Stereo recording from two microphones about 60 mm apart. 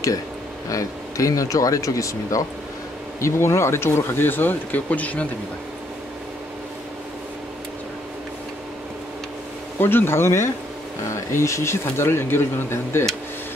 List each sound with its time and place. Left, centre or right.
0.7 s speech: left
3.2 s speech: left
9.8 s speech: left